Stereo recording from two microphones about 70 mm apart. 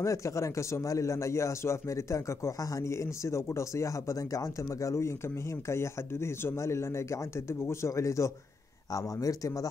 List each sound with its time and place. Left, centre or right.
0.0 s a man's voice: left